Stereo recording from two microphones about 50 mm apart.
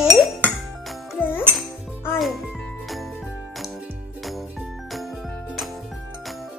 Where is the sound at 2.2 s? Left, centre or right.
Centre.